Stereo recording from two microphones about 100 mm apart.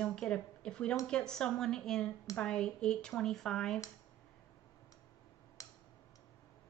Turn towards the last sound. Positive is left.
turn(degrees=35)  # may be behind; listen again after turning